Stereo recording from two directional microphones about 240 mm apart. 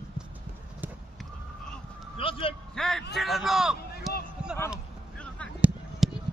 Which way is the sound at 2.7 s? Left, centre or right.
Centre.